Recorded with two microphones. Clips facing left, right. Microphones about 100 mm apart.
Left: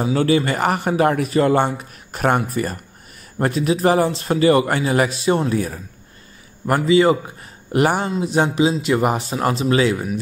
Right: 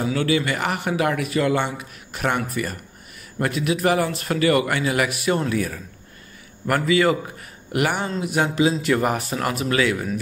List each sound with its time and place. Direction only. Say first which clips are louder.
0.0 s a man's voice: left 4 dB; 35° left (ahead or behind)